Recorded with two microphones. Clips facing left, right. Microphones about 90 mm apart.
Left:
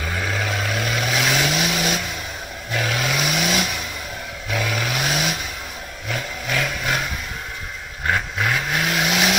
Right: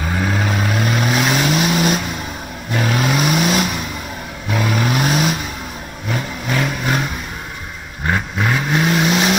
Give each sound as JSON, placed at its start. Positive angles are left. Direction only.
{"t": 0.2, "sound": "vehicle", "side_deg": -35}
{"t": 8.1, "sound": "vehicle", "side_deg": -25}